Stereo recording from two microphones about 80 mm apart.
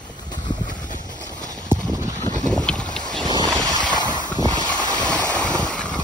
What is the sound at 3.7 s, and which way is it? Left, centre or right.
Boat, left.